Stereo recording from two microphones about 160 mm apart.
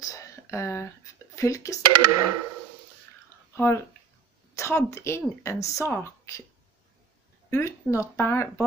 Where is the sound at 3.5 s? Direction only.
15° left (ahead or behind).